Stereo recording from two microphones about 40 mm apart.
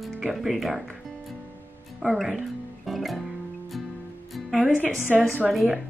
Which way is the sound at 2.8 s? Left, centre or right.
Centre.